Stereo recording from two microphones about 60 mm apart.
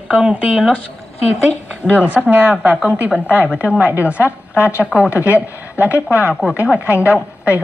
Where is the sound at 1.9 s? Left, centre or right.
Right.